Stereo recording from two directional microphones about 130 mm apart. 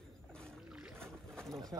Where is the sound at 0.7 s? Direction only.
5° right (ahead or behind).